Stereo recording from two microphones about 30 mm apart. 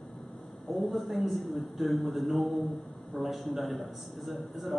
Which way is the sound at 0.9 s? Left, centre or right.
Centre.